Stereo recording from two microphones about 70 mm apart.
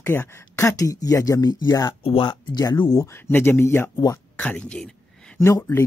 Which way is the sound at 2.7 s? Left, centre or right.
Left.